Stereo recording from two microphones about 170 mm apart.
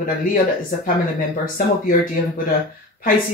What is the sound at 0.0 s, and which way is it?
Speech, 55° left (ahead or behind).